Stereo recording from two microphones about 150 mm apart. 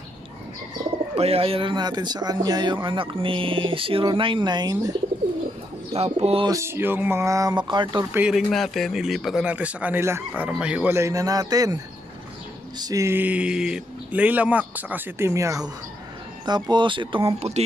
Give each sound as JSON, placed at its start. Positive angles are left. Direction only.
{"t": 1.1, "sound": "speech", "side_deg": -40}
{"t": 5.9, "sound": "speech", "side_deg": -40}
{"t": 6.5, "sound": "speech", "side_deg": -15}
{"t": 8.1, "sound": "a man's voice", "side_deg": -10}